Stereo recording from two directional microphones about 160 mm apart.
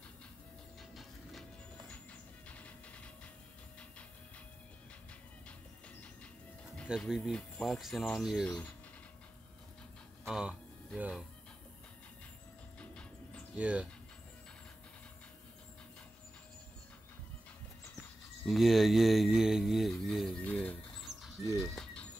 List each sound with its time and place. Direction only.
2.4 s music: 10° left (ahead or behind)
7.1 s speech: centre (ahead or behind)
10.2 s speech: centre (ahead or behind)
13.6 s speech: 10° right (ahead or behind)
18.4 s speech: centre (ahead or behind)
21.5 s a sound: 5° left (ahead or behind)